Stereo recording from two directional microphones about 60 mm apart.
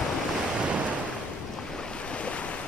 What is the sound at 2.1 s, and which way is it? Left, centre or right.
Waves, left.